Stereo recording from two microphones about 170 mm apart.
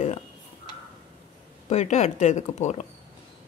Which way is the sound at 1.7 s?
40° left (ahead or behind).